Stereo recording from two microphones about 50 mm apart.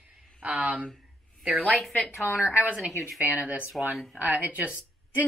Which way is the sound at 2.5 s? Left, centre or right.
Right.